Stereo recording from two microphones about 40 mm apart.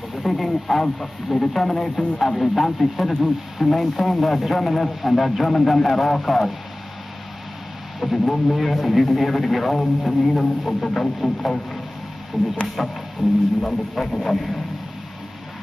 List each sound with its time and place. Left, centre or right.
0.2 s speech: centre
8.0 s speech: centre
13.6 s speech: centre